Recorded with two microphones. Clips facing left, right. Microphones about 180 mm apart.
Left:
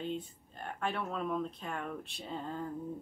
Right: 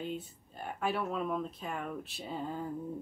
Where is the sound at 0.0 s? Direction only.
5° right (ahead or behind).